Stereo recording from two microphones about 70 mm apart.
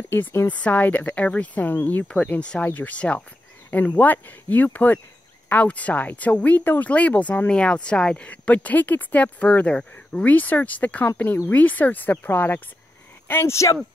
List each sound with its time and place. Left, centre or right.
0.1 s speech: left
0.5 s speech: left
13.3 s speech: left